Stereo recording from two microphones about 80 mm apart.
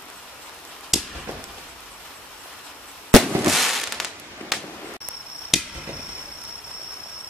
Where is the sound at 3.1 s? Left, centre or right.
Centre.